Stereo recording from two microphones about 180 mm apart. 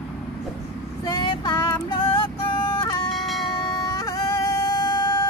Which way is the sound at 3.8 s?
20° left (ahead or behind).